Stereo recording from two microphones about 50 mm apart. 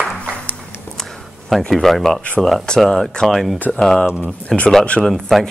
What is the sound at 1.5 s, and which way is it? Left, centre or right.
Speech, centre.